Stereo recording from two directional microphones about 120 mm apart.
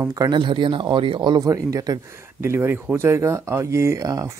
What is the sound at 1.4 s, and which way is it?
Speech, 30° right (ahead or behind).